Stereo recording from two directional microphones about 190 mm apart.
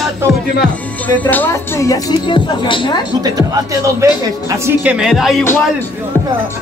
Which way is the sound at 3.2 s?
15° right (ahead or behind).